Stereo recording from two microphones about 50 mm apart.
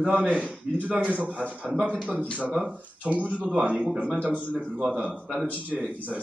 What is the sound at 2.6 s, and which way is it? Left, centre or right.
Speech, right.